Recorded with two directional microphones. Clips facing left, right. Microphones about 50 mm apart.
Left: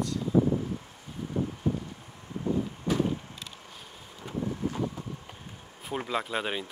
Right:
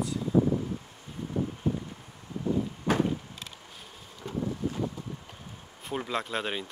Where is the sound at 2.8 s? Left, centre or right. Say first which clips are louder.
Right 2 dB; right.